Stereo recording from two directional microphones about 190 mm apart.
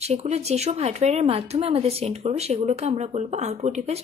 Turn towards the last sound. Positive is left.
turn(degrees=-35)  # may be behind; listen again after turning